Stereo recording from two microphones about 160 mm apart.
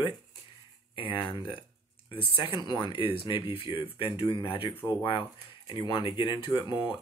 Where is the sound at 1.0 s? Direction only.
30° left (ahead or behind).